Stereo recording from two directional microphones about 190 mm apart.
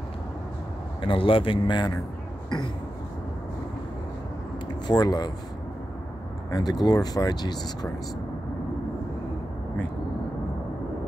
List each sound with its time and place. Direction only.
1.0 s speech: 25° left (ahead or behind)
4.8 s speech: 20° left (ahead or behind)
6.5 s speech: 20° left (ahead or behind)